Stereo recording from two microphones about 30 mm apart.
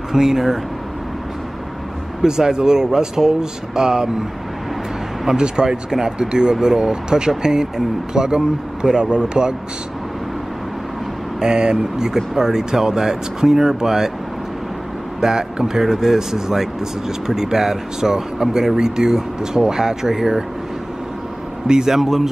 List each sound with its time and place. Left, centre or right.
0.1 s speech: centre
2.2 s speech: right
5.4 s speech: right
5.9 s speech: centre
11.4 s speech: right
15.1 s speech: right
21.6 s speech: right
21.9 s speech: centre